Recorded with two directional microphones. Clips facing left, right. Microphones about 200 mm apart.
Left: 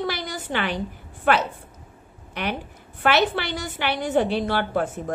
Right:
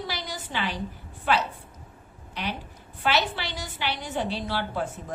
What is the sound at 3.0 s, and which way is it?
A woman's voice, 55° left (ahead or behind).